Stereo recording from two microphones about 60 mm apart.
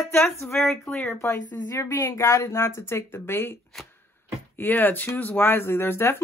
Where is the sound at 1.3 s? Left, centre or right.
Left.